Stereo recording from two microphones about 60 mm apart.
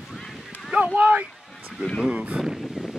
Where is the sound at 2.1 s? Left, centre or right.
Right.